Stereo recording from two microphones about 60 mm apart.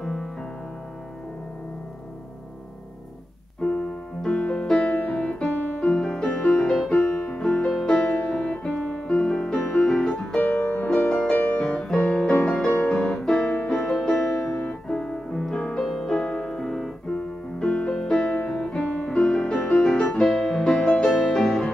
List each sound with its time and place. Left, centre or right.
0.0 s music: centre
4.2 s music: centre
6.0 s music: centre
10.4 s music: left
11.8 s music: centre
15.9 s piano: centre
17.1 s music: centre